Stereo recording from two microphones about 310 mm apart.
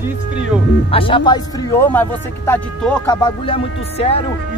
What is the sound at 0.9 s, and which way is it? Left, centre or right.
Speech, centre.